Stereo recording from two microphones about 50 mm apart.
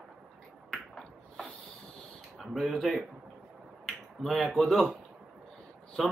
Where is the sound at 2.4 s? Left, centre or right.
Centre.